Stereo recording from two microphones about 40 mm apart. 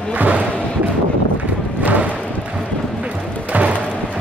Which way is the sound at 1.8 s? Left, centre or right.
Right.